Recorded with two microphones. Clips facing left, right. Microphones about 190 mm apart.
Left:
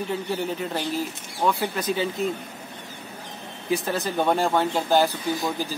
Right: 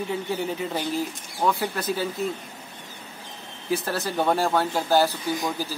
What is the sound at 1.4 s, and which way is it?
Speech, centre (ahead or behind).